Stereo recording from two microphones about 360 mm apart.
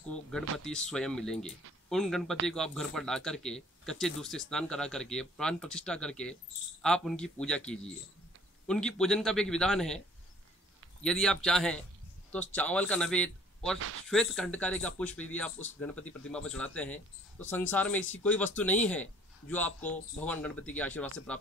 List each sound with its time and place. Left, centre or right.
0.3 s speech: centre
13.7 s speech: right
14.0 s speech: centre